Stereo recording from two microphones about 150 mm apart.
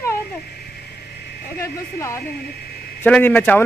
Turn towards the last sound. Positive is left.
turn(degrees=10)  # may be behind; listen again after turning